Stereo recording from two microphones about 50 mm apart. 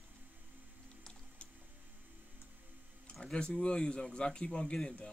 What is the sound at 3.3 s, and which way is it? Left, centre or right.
Speech, centre.